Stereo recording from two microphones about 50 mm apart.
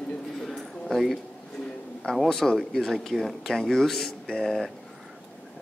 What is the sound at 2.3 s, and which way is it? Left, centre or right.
Speech, centre.